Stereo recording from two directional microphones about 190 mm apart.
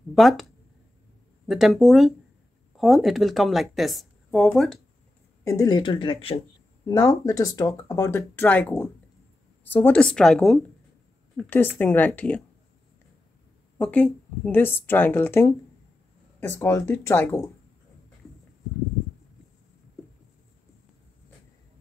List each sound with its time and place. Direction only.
0.1 s speech: centre (ahead or behind)
1.5 s speech: centre (ahead or behind)
5.4 s speech: 20° left (ahead or behind)
13.7 s speech: 5° left (ahead or behind)